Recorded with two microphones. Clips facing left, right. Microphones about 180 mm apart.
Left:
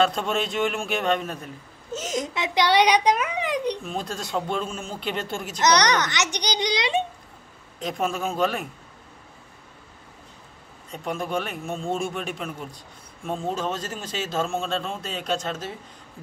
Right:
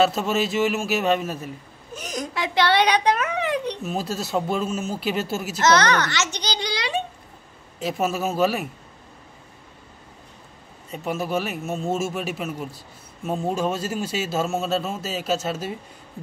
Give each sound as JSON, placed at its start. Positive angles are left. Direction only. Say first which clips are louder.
{"t": 0.0, "sound": "a man's voice", "louder": "right 2 dB", "side_deg": -5}
{"t": 1.9, "sound": "a woman's voice", "louder": "left 3 dB", "side_deg": 25}
{"t": 3.8, "sound": "a man's voice", "louder": "right 4 dB", "side_deg": -5}
{"t": 5.6, "sound": "a woman's voice", "louder": "right 1 dB", "side_deg": 15}
{"t": 7.8, "sound": "a man's voice", "louder": "right 2 dB", "side_deg": -5}
{"t": 10.9, "sound": "a man's voice", "louder": "right 2 dB", "side_deg": -5}